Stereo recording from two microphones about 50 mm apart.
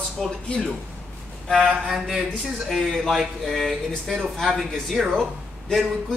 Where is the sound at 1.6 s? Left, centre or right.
Centre.